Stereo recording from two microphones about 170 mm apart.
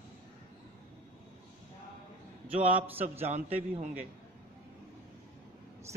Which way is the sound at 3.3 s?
45° right (ahead or behind).